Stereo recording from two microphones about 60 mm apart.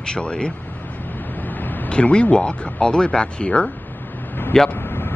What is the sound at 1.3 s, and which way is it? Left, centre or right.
Vehicle, left.